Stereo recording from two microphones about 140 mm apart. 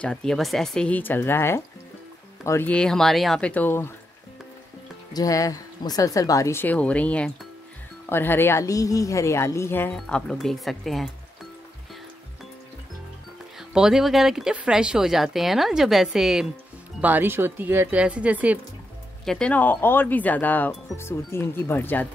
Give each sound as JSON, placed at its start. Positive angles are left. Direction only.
{"t": 0.0, "sound": "speech", "side_deg": 5}
{"t": 2.7, "sound": "speech", "side_deg": 5}
{"t": 5.1, "sound": "speech", "side_deg": 25}
{"t": 9.9, "sound": "speech", "side_deg": 5}
{"t": 13.6, "sound": "speech", "side_deg": -5}
{"t": 19.2, "sound": "speech", "side_deg": 5}